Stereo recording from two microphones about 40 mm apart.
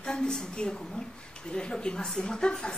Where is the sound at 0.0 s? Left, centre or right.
Centre.